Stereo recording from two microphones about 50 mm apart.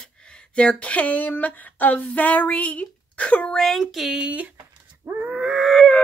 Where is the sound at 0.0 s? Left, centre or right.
Centre.